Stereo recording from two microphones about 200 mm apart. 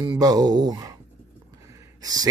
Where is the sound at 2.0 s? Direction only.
20° right (ahead or behind).